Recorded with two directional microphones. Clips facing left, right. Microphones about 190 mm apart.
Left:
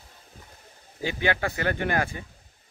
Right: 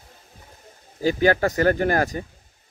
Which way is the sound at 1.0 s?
40° right (ahead or behind).